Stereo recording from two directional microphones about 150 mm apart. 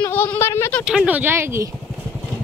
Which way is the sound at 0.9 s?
10° right (ahead or behind).